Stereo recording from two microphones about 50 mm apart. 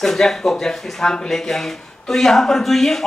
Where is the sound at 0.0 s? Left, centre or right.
Centre.